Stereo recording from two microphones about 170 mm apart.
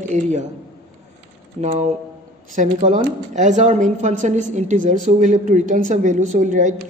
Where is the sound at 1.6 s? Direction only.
40° right (ahead or behind).